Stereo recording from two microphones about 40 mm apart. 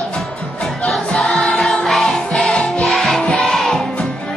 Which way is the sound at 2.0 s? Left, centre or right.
Centre.